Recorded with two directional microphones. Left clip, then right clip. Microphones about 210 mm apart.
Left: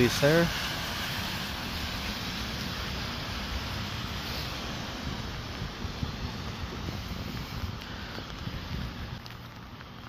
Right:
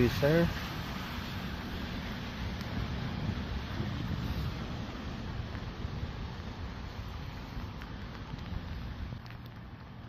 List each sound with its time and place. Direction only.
0.0 s speech: 5° left (ahead or behind)